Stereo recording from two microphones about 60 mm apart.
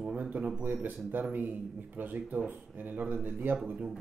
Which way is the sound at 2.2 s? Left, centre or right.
Centre.